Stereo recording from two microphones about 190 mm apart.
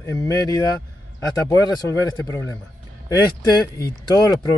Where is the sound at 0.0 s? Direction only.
15° left (ahead or behind).